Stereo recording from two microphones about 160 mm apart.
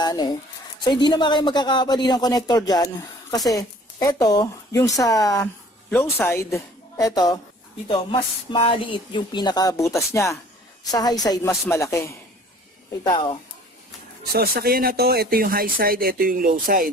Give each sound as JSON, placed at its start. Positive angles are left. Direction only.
{"t": 0.0, "sound": "a woman's voice", "side_deg": 25}
{"t": 7.9, "sound": "speech", "side_deg": 35}
{"t": 13.0, "sound": "speech", "side_deg": 30}
{"t": 14.3, "sound": "speech", "side_deg": -70}